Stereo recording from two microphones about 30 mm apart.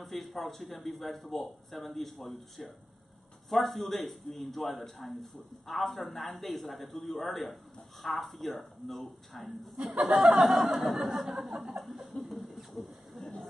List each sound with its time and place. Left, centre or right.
0.0 s a man's voice: centre
9.9 s speech: right
10.4 s chuckle: centre
11.8 s a sound: centre